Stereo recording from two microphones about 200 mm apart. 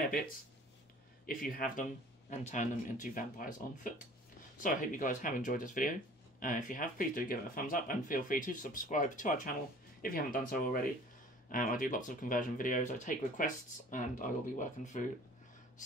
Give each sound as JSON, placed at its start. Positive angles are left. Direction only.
{"t": 1.2, "sound": "speech", "side_deg": 45}